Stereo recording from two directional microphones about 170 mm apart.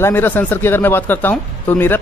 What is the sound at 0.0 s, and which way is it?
Speech, 10° left (ahead or behind).